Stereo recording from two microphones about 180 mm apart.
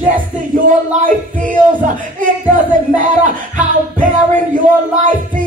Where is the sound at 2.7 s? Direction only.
45° right (ahead or behind).